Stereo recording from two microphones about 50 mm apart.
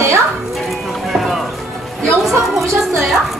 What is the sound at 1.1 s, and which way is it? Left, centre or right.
Music, centre.